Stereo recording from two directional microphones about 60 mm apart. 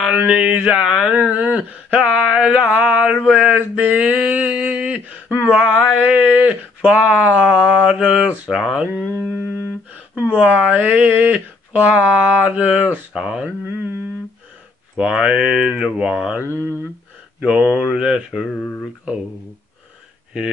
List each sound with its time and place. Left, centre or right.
0.4 s speech: centre
1.1 s a sound: right
8.0 s speech: centre
8.5 s speech: centre
8.7 s a sound: centre
9.1 s humming: right
10.2 s a sound: right
13.1 s speech: centre
15.0 s speech: centre
16.4 s speech: left
17.4 s speech: centre
18.5 s speech: left